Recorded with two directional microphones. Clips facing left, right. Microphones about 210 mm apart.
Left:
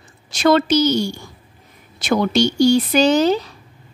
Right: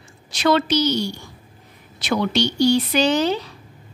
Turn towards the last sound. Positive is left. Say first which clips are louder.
# left 4 dB
turn(degrees=45)  # may be behind; listen again after turning